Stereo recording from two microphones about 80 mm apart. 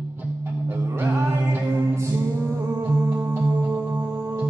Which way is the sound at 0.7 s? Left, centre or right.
Right.